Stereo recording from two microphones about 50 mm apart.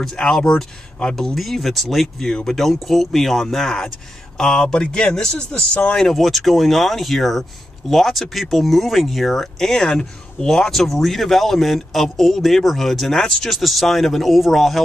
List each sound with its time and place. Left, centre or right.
0.1 s speech: centre
1.1 s speech: centre
4.4 s speech: centre